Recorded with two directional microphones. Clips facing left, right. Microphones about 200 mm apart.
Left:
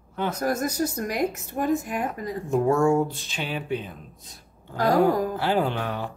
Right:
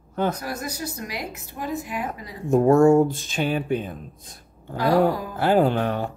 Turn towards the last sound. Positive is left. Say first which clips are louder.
# right 5 dB
turn(degrees=-45)  # may be behind; listen again after turning